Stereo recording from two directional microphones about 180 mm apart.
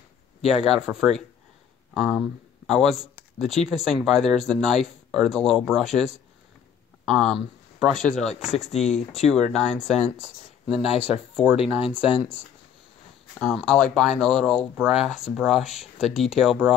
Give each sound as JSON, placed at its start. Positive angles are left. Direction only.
{"t": 0.5, "sound": "speech", "side_deg": -5}
{"t": 7.2, "sound": "speech", "side_deg": 0}
{"t": 8.7, "sound": "speech", "side_deg": 35}
{"t": 9.2, "sound": "speech", "side_deg": 0}
{"t": 10.8, "sound": "speech", "side_deg": -5}
{"t": 13.4, "sound": "speech", "side_deg": 0}